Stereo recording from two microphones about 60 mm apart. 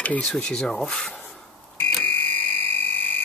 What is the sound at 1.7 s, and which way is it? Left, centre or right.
Fire alarm, left.